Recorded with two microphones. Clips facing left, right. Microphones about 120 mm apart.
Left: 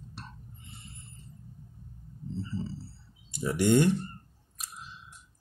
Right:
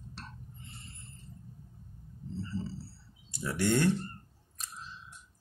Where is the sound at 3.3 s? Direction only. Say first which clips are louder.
Left 5 dB; 15° left (ahead or behind).